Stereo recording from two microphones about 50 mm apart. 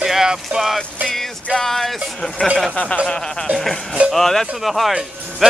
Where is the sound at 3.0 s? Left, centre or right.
Centre.